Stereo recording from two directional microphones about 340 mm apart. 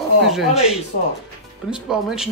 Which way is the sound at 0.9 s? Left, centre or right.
Left.